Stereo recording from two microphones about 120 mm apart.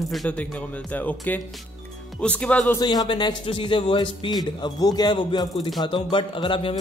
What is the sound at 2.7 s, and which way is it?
Speech, 35° left (ahead or behind).